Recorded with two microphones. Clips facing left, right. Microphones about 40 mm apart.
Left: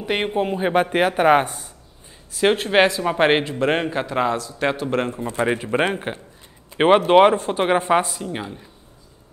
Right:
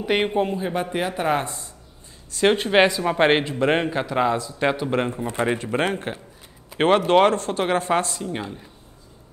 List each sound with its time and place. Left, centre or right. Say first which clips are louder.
0.0 s a man's voice: right 1 dB; centre
0.5 s speech: left 6 dB; left
2.3 s a man's voice: left 1 dB; centre
5.4 s speech: left 2 dB; centre
8.1 s speech: even; centre